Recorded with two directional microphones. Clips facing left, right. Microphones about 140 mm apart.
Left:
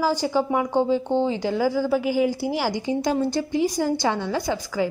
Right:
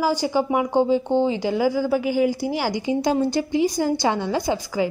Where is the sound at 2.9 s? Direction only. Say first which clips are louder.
Right 3 dB; 15° right (ahead or behind).